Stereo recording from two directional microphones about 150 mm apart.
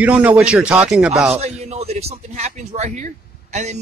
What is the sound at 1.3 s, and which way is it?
A man's voice, 45° right (ahead or behind).